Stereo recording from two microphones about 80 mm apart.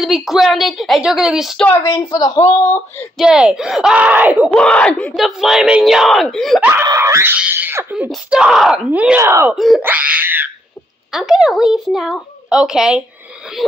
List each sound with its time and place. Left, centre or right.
0.0 s speech: centre
1.7 s speech: left
3.2 s speech: centre
3.9 s speech: centre
4.6 s speech: centre
5.1 s speech: centre
7.0 s a sound: right
8.3 s speech: centre
8.9 s speech: centre
9.2 s speech: right
9.8 s wail: right
11.1 s speech: centre